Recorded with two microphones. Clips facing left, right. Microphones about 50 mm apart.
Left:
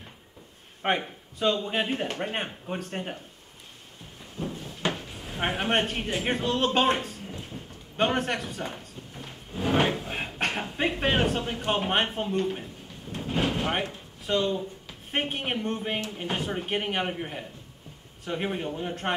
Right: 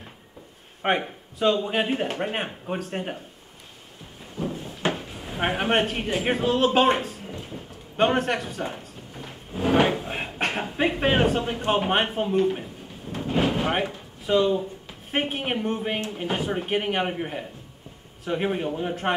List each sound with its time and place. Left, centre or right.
0.8 s speech: centre
4.5 s speech: centre
13.1 s drawer open or close: centre
15.0 s a man's voice: centre